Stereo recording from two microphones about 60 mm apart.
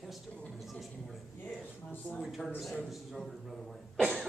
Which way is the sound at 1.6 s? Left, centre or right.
Left.